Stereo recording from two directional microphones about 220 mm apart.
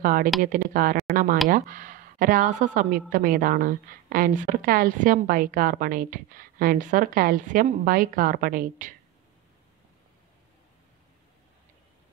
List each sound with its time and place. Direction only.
0.0 s a woman's voice: 40° right (ahead or behind)